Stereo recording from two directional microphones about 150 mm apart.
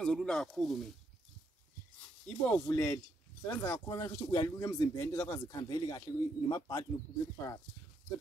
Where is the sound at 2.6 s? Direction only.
20° left (ahead or behind).